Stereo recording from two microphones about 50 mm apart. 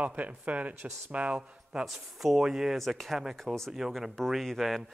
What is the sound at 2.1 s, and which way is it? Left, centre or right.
Speech, centre.